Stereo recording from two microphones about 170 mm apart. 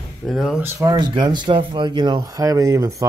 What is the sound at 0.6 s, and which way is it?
Speech, 20° right (ahead or behind).